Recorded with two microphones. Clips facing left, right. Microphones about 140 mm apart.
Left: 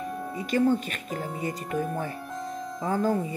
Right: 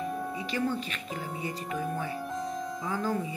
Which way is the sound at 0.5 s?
45° left (ahead or behind).